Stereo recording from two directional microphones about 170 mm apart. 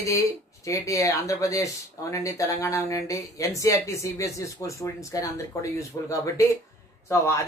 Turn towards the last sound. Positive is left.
turn(degrees=15)  # may be behind; listen again after turning